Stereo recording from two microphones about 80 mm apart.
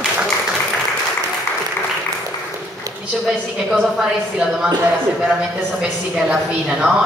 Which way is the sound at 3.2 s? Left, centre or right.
Centre.